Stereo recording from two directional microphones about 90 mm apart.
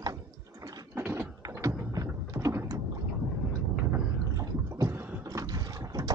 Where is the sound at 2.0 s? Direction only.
35° right (ahead or behind).